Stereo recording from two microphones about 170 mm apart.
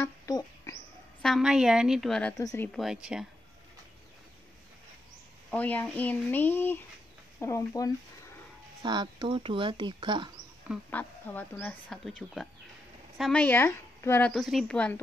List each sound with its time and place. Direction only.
0.0 s a sound: 20° left (ahead or behind)
1.2 s a woman's voice: centre (ahead or behind)
2.3 s speech: 20° left (ahead or behind)
2.7 s a woman's voice: centre (ahead or behind)
5.5 s speech: 10° left (ahead or behind)
8.8 s speech: 25° right (ahead or behind)
10.9 s speech: 10° left (ahead or behind)
14.3 s a woman's voice: centre (ahead or behind)